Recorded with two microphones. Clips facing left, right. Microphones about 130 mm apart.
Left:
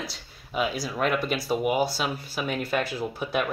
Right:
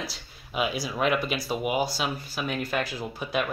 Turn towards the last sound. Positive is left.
turn(degrees=0)  # may be behind; listen again after turning